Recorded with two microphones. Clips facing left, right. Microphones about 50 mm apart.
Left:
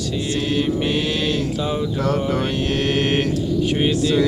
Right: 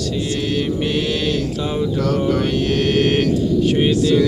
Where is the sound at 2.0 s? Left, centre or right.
Left.